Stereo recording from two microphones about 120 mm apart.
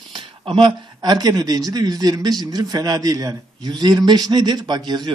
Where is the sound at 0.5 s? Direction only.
45° right (ahead or behind).